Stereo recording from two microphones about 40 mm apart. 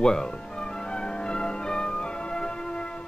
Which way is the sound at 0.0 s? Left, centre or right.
Centre.